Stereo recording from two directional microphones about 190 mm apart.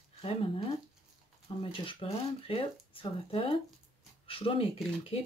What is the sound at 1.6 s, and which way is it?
Speech, 30° left (ahead or behind).